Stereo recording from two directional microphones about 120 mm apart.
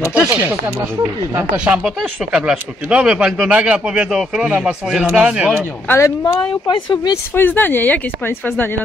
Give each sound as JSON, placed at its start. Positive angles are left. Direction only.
{"t": 0.3, "sound": "speech", "side_deg": -15}
{"t": 5.9, "sound": "speech", "side_deg": 20}
{"t": 6.2, "sound": "speech", "side_deg": 40}
{"t": 7.3, "sound": "a woman's voice", "side_deg": 15}